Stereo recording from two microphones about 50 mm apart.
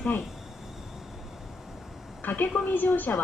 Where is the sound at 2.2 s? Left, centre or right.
Left.